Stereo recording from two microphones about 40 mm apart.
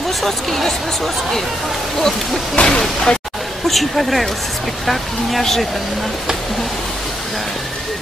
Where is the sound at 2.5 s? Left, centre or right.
Left.